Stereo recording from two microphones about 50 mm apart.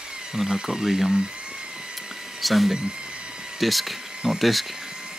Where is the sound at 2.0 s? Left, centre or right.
Centre.